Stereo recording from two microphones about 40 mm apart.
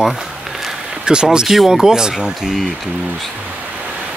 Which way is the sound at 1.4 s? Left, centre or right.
Centre.